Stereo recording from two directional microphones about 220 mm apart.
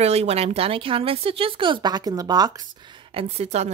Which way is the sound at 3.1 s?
30° right (ahead or behind).